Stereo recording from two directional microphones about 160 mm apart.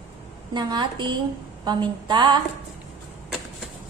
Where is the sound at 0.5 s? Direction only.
30° right (ahead or behind).